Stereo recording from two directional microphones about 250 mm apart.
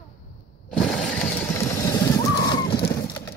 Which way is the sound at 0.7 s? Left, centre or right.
Centre.